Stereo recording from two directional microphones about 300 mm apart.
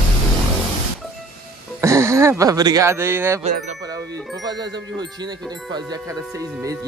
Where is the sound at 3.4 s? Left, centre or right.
Right.